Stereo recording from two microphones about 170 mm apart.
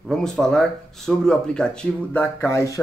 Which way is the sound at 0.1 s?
5° left (ahead or behind).